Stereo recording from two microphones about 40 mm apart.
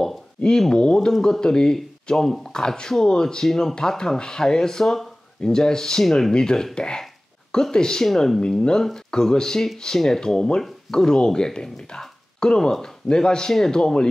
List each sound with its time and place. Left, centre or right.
0.4 s speech: centre
6.0 s speech: centre
6.3 s speech: centre
8.4 s speech: centre